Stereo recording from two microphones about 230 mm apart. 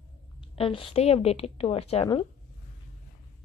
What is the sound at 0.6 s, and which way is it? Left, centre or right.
A woman's voice, left.